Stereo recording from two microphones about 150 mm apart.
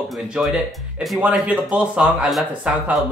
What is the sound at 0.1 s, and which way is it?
Speech, centre (ahead or behind).